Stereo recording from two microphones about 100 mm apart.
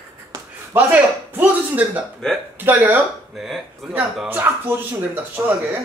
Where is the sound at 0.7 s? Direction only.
20° right (ahead or behind).